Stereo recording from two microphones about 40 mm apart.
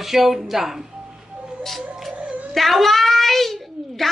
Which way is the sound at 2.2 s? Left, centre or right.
Right.